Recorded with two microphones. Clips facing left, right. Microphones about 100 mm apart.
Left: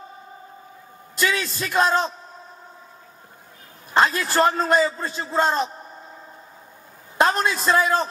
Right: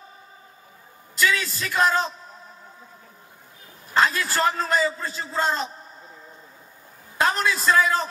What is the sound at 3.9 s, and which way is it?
A man's voice, 20° left (ahead or behind).